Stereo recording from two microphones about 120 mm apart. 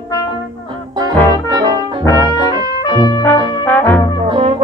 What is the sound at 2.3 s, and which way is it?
Trumpet, 35° right (ahead or behind).